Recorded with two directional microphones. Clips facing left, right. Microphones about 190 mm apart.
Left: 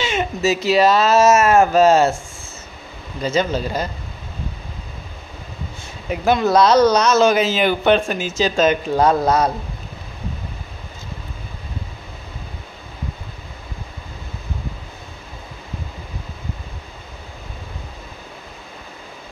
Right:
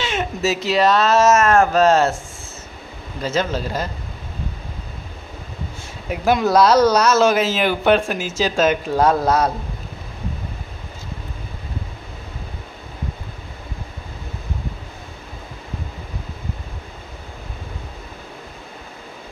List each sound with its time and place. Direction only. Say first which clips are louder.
0.0 s speech: left 2 dB; centre (ahead or behind)
3.2 s speech: left 2 dB; centre (ahead or behind)
6.0 s speech: left 1 dB; 5° right (ahead or behind)